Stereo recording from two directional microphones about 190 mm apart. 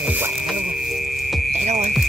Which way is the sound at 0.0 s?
5° right (ahead or behind).